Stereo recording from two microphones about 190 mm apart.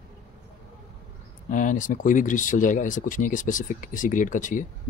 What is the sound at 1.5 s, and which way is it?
Speech, 40° left (ahead or behind).